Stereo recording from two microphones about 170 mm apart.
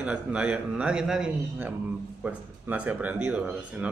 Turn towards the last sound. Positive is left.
turn(degrees=-10)  # may be behind; listen again after turning